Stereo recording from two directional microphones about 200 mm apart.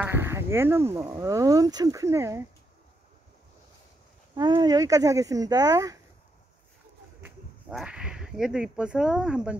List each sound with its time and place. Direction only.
0.0 s speech: 10° right (ahead or behind)
4.4 s speech: 20° right (ahead or behind)
7.7 s speech: 5° right (ahead or behind)